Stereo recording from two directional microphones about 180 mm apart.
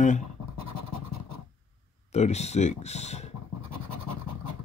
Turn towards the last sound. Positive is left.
turn(degrees=40)  # may be behind; listen again after turning